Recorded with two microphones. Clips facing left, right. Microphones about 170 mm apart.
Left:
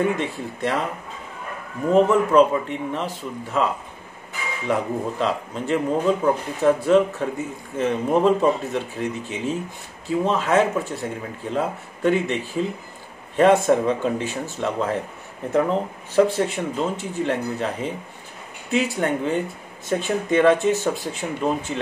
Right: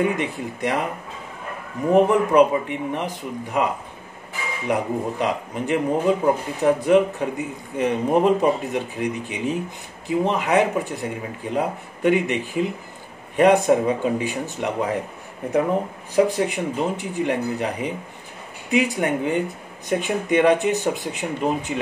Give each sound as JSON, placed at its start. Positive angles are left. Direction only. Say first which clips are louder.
{"t": 0.0, "sound": "speech", "louder": "even", "side_deg": -15}
{"t": 1.9, "sound": "speech", "louder": "even", "side_deg": -15}
{"t": 5.2, "sound": "speech", "louder": "even", "side_deg": -15}